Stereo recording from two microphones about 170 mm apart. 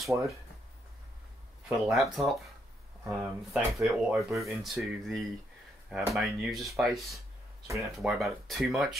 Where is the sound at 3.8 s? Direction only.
Centre (ahead or behind).